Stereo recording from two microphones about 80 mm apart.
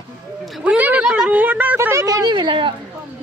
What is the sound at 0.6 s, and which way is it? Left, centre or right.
Speech, centre.